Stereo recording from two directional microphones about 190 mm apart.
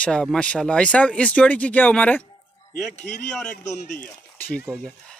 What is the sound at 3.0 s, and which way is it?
Speech, 40° left (ahead or behind).